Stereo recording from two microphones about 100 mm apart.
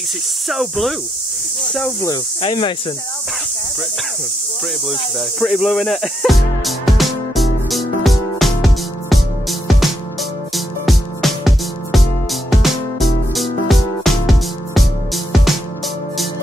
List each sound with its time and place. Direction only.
0.5 s speech: centre (ahead or behind)
2.4 s speech: 55° left (ahead or behind)
5.4 s music: centre (ahead or behind)